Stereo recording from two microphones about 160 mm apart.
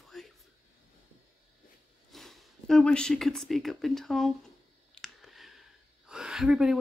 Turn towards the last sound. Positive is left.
turn(degrees=-5)  # may be behind; listen again after turning